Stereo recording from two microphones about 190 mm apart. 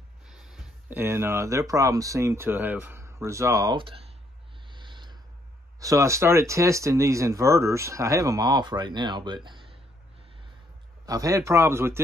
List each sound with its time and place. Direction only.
0.3 s speech: 5° right (ahead or behind); by 4.0 s 25° right (ahead or behind)
4.6 s a sound: 25° right (ahead or behind)
5.8 s speech: 15° right (ahead or behind)
11.1 s speech: 20° right (ahead or behind)